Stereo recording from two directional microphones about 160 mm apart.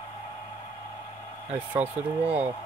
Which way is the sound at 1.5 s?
10° right (ahead or behind).